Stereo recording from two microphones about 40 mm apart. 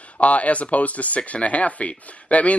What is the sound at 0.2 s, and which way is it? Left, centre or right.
Speech, left.